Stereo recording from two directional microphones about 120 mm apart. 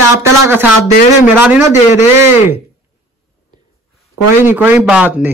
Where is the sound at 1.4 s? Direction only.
15° right (ahead or behind).